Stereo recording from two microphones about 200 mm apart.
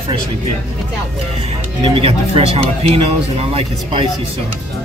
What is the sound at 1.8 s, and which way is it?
Speech, 30° right (ahead or behind).